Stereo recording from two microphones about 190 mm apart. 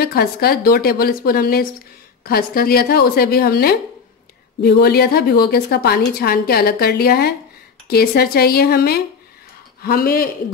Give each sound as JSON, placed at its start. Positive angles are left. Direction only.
{"t": 0.0, "sound": "a woman's voice", "side_deg": 55}